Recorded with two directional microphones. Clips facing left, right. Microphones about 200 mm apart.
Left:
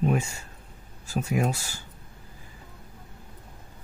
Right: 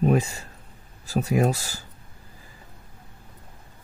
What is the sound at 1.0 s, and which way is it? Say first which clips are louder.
Speech: right 4 dB; 35° right (ahead or behind).